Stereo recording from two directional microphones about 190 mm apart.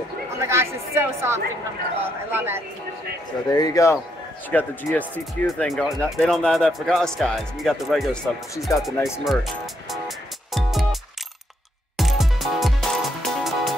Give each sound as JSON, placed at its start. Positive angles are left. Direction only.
{"t": 0.4, "sound": "speech", "side_deg": -15}
{"t": 3.5, "sound": "a man's voice", "side_deg": 20}
{"t": 9.2, "sound": "music", "side_deg": 0}
{"t": 12.0, "sound": "music", "side_deg": 0}